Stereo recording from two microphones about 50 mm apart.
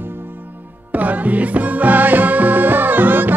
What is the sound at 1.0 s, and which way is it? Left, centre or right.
Music, right.